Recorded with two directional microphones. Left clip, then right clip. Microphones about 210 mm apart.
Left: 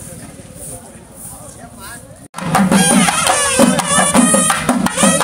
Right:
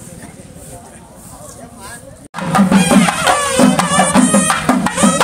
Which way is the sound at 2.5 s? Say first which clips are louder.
Right 1 dB; 50° left (ahead or behind).